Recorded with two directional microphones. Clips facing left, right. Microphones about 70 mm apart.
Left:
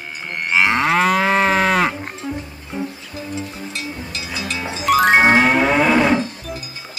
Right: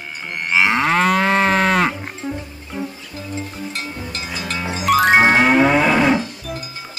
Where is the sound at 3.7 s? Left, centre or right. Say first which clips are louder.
Even; right.